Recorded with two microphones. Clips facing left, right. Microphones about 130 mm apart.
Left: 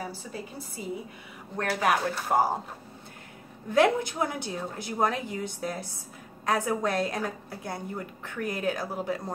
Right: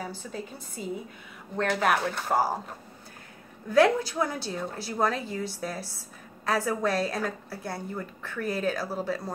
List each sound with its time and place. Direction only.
0.0 s a woman's voice: 10° left (ahead or behind)
3.7 s a woman's voice: 20° left (ahead or behind)